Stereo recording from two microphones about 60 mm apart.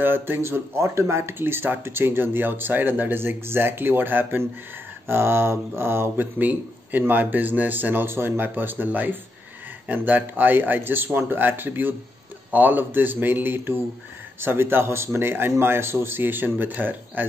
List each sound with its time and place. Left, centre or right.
0.0 s speech: right
6.3 s speech: right